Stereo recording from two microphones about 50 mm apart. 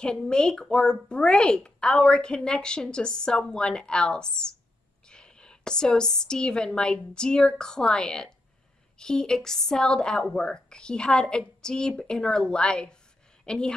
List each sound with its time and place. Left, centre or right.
0.0 s a woman's voice: centre